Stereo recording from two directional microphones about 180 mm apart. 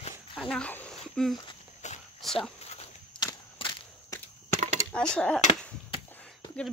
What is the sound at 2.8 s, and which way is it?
Walk, 25° left (ahead or behind).